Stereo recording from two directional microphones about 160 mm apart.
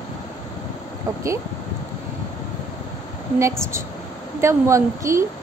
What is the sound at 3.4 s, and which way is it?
A woman's voice, 20° right (ahead or behind).